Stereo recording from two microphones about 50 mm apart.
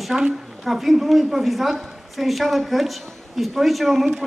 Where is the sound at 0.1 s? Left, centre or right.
Centre.